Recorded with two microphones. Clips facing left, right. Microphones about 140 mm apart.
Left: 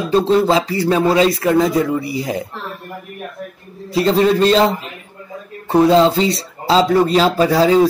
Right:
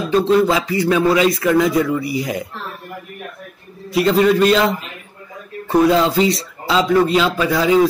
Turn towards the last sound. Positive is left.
turn(degrees=35)  # may be behind; listen again after turning